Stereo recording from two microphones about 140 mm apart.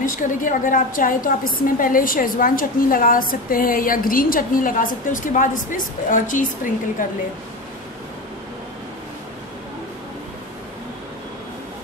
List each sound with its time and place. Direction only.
0.0 s a woman's voice: 75° left (ahead or behind)